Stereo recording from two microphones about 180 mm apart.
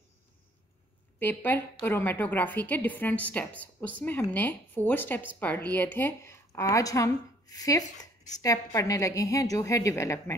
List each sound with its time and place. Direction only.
1.2 s a woman's voice: 10° left (ahead or behind)